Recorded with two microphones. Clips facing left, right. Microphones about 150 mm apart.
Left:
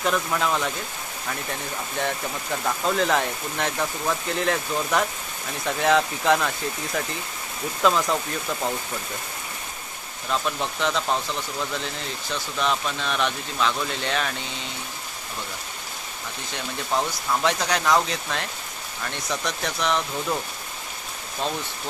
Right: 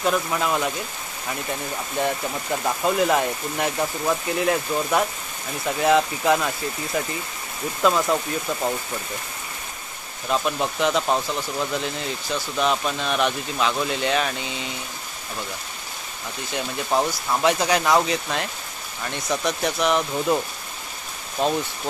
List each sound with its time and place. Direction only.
0.0 s speech: 5° right (ahead or behind)
10.3 s speech: 10° right (ahead or behind)
12.3 s speech: 10° right (ahead or behind)
16.9 s speech: 10° right (ahead or behind)
21.4 s speech: 10° right (ahead or behind)